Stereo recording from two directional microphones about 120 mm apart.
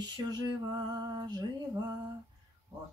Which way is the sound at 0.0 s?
35° right (ahead or behind).